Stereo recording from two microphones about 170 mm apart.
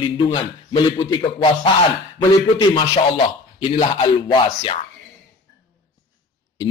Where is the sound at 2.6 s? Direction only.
25° left (ahead or behind).